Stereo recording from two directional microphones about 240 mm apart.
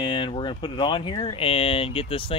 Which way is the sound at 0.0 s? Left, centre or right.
Centre.